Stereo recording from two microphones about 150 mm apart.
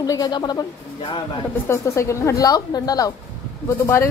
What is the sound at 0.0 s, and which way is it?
A woman's voice, 25° left (ahead or behind).